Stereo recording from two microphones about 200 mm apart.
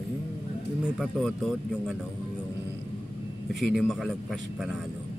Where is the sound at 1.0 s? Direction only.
Centre (ahead or behind).